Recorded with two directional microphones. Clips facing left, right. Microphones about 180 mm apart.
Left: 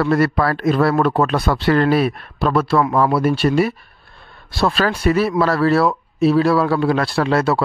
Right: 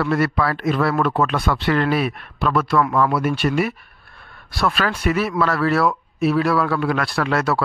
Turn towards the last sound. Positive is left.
turn(degrees=30)  # may be behind; listen again after turning